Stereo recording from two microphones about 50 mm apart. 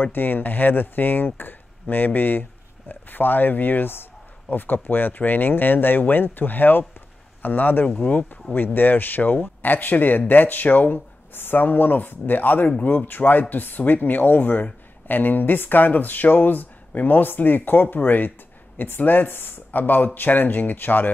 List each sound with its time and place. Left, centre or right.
0.0 s speech: left